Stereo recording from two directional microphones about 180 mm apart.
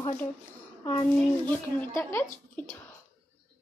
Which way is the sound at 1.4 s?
15° left (ahead or behind).